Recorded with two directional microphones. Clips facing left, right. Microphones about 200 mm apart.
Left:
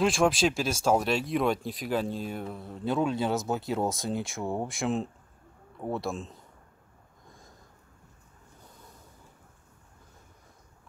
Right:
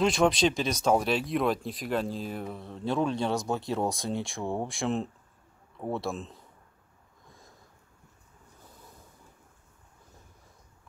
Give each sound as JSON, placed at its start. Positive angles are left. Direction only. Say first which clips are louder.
{"t": 0.0, "sound": "speech", "louder": "even", "side_deg": 5}